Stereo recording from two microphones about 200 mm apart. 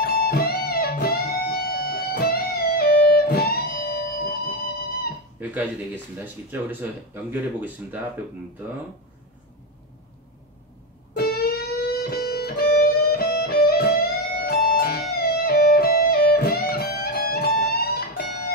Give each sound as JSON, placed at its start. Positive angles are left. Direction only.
{"t": 0.0, "sound": "music", "side_deg": 50}
{"t": 6.1, "sound": "speech", "side_deg": -10}
{"t": 11.1, "sound": "music", "side_deg": 50}